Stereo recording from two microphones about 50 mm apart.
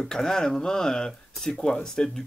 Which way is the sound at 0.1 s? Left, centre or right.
Centre.